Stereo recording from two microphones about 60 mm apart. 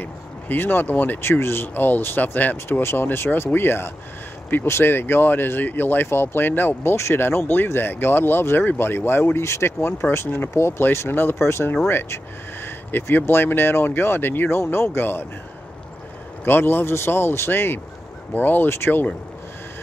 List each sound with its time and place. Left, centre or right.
0.0 s speech: left
1.2 s speech: left
16.4 s speech: left